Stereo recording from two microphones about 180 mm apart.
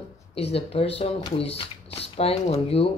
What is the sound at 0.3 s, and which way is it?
Speech, 35° left (ahead or behind).